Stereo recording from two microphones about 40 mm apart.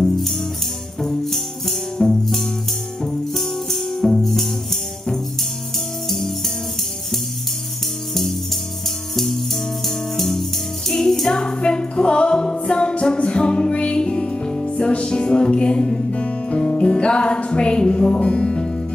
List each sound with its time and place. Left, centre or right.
1.0 s music: centre
3.3 s music: centre
6.0 s music: centre
8.1 s music: centre; by 18.7 s left